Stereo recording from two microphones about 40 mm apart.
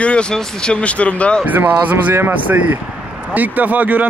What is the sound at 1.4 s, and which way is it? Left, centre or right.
Speech, right.